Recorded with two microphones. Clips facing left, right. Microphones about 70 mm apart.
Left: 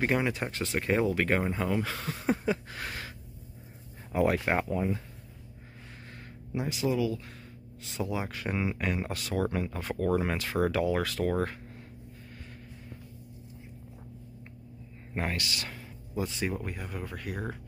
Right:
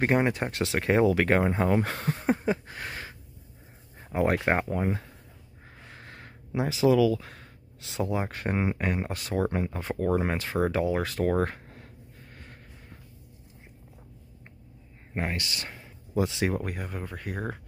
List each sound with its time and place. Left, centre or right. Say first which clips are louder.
0.0 s speech: right 4 dB; right
0.5 s speech: right 3 dB; right
2.1 s a sound: right 1 dB; right
4.1 s speech: right 2 dB; right
6.5 s speech: right 7 dB; right
8.0 s speech: right 4 dB; right
15.3 s speech: even; right
16.2 s speech: right 5 dB; right
16.5 s speech: right 5 dB; right
16.8 s speech: right 1 dB; right